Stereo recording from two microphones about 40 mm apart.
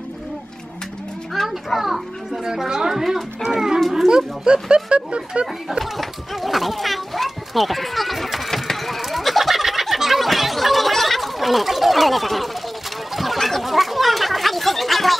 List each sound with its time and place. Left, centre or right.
1.3 s a child's voice: centre; by 5.5 s right
5.7 s children playing: centre
13.1 s chatter: centre